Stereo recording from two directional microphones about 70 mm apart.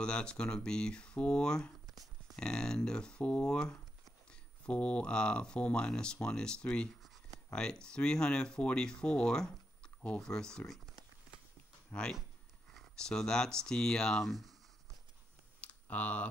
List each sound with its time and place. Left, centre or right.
0.0 s speech: centre
11.9 s speech: centre
15.6 s typing: left